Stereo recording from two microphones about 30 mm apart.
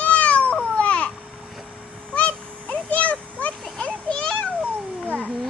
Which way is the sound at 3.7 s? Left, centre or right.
Left.